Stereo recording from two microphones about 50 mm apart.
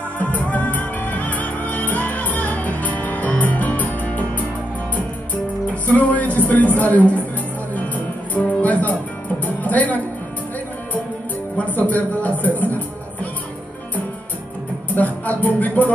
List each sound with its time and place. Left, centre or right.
0.2 s music: left
5.9 s music: left
11.5 s music: left
15.0 s music: left